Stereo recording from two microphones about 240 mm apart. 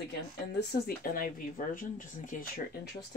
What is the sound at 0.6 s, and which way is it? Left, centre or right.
Speech, left.